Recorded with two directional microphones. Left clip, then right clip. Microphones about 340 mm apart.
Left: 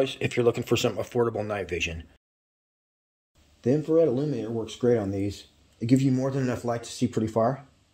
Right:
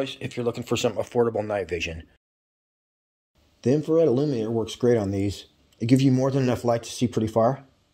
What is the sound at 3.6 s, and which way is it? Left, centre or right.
Speech, right.